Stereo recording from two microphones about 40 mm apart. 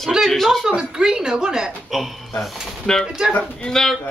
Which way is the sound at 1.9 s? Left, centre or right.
Centre.